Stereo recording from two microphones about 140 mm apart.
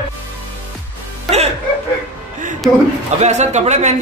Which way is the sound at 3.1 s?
55° right (ahead or behind).